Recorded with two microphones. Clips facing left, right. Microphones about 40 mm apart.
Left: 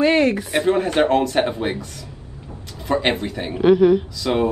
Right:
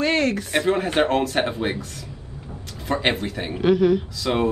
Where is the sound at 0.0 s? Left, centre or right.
Centre.